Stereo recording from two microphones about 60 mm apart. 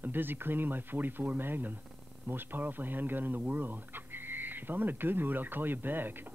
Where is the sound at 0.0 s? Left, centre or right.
Right.